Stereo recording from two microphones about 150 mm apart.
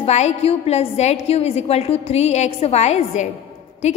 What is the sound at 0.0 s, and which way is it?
A woman's voice, 45° left (ahead or behind).